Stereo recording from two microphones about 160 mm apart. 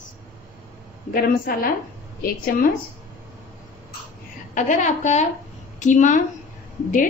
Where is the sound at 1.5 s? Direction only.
60° left (ahead or behind).